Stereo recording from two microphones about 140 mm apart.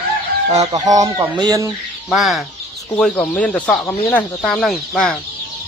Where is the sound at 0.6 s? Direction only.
25° right (ahead or behind).